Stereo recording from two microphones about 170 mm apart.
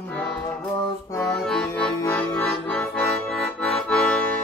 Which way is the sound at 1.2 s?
5° left (ahead or behind).